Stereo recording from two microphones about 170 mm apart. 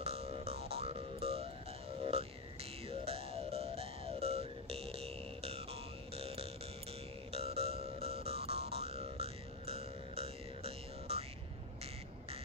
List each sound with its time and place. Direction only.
0.0 s music: 35° right (ahead or behind)
2.9 s music: 35° right (ahead or behind)